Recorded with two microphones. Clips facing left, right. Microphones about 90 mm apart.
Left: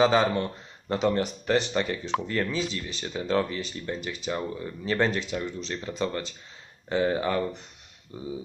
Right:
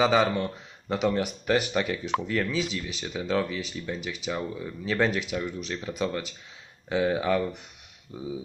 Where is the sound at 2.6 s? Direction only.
35° left (ahead or behind).